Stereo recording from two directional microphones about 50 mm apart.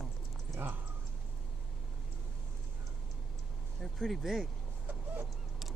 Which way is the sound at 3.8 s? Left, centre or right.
Centre.